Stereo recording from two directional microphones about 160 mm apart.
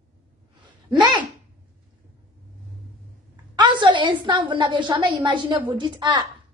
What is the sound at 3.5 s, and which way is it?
A woman's voice, 30° right (ahead or behind).